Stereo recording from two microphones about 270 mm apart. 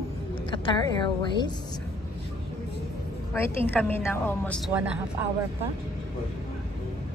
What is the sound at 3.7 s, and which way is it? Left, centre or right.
A woman's voice, centre.